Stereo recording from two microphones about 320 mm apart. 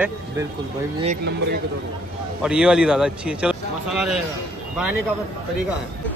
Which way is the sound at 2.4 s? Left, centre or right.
Centre.